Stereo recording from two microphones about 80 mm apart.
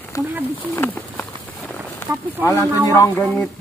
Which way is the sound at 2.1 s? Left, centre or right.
Right.